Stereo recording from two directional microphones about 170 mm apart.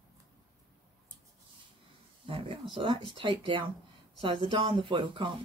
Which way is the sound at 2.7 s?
30° right (ahead or behind).